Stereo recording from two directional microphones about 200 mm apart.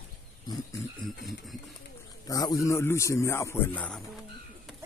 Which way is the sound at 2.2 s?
15° left (ahead or behind).